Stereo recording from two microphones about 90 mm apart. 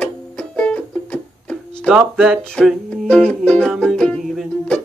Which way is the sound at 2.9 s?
10° left (ahead or behind).